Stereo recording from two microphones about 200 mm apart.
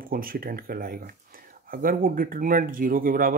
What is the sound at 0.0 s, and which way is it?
Speech, 45° right (ahead or behind).